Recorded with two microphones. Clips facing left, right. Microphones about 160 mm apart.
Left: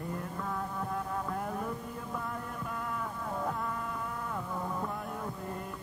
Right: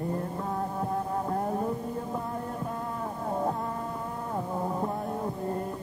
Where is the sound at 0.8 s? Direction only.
35° right (ahead or behind).